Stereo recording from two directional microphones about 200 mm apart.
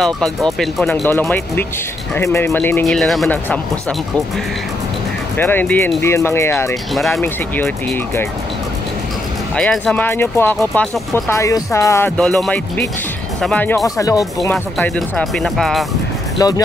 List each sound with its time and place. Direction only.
0.0 s speech: centre (ahead or behind)
5.4 s speech: 10° left (ahead or behind)
6.9 s speech: centre (ahead or behind)
9.6 s speech: 5° left (ahead or behind)
12.2 s speech: 5° left (ahead or behind)
16.3 s speech: 15° left (ahead or behind)